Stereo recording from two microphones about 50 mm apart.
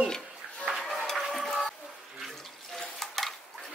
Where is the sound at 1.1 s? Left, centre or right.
Centre.